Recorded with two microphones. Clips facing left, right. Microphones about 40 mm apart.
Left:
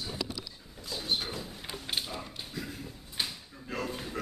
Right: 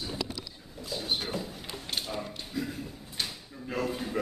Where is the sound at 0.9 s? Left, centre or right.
Centre.